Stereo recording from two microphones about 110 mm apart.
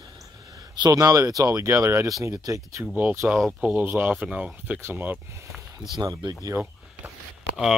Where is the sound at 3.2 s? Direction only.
10° right (ahead or behind).